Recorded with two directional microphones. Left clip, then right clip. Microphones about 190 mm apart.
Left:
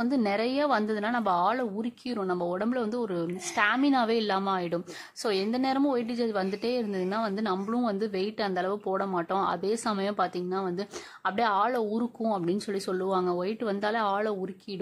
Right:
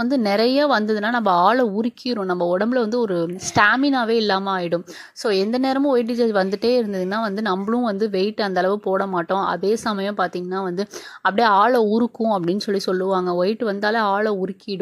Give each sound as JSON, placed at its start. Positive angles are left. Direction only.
{"t": 0.0, "sound": "a woman's voice", "side_deg": -25}